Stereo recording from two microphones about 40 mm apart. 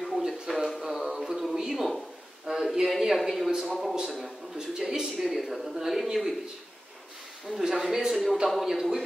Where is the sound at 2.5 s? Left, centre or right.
Right.